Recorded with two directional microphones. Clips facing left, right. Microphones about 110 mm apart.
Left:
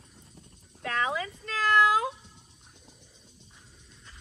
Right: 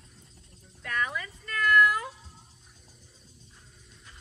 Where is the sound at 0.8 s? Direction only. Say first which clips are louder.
Left 3 dB; 90° left.